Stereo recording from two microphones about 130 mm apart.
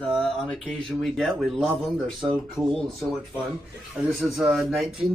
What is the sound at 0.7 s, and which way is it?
Speech, 5° left (ahead or behind).